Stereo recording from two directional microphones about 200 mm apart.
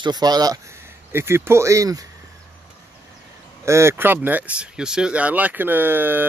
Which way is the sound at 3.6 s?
15° right (ahead or behind).